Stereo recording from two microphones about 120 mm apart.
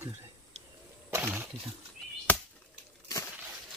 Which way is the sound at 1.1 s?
15° right (ahead or behind).